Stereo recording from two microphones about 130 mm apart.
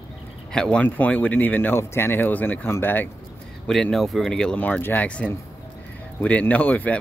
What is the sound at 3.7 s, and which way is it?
Speech, 5° left (ahead or behind).